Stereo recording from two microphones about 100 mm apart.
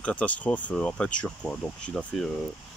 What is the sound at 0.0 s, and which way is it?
Speech, 15° left (ahead or behind).